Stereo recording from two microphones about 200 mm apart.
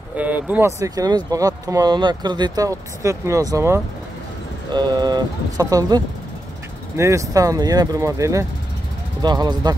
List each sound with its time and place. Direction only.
0.1 s speech: 5° right (ahead or behind)